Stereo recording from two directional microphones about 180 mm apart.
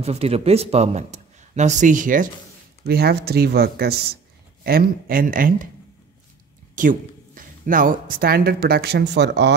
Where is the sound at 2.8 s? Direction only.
60° right (ahead or behind).